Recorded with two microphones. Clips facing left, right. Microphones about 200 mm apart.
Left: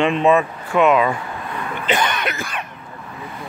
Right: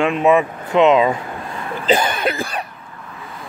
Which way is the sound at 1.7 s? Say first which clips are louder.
Right 4 dB; 35° right (ahead or behind).